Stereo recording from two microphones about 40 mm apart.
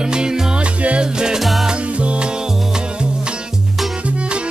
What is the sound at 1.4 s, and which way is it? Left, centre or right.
Music, centre.